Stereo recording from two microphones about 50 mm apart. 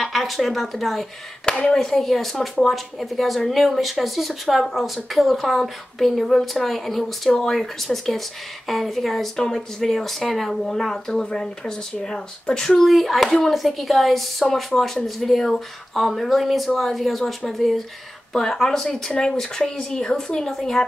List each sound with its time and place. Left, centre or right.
0.0 s speech: centre
1.4 s speech: centre
12.8 s speech: centre
18.3 s speech: centre